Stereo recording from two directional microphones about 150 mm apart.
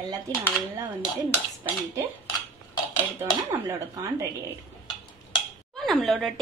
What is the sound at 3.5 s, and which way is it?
Speech, 20° right (ahead or behind).